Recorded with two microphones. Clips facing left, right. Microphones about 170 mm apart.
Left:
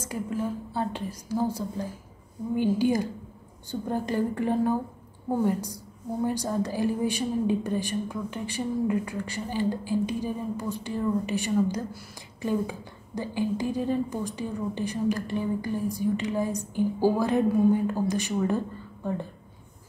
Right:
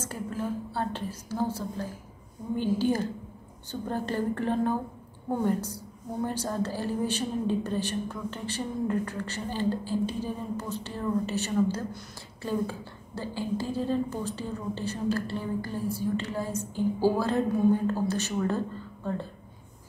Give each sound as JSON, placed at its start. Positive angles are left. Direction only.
{"t": 0.0, "sound": "a woman's voice", "side_deg": 15}